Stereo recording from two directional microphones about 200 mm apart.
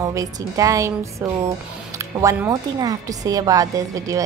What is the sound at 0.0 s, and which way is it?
A woman's voice, 15° right (ahead or behind).